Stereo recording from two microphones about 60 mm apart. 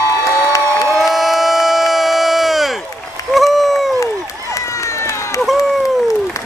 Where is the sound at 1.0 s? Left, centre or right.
Centre.